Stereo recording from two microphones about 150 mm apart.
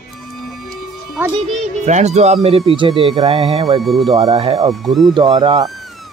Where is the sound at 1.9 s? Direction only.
50° right (ahead or behind).